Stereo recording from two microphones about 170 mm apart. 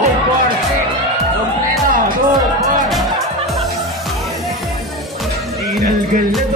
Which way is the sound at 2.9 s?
Centre (ahead or behind).